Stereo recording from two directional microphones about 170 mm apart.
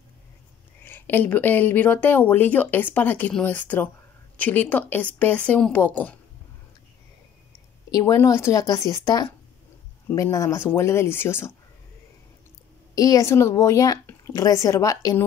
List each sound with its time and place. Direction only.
0.8 s speech: 10° left (ahead or behind)
7.9 s speech: 20° left (ahead or behind)
12.9 s speech: 20° left (ahead or behind)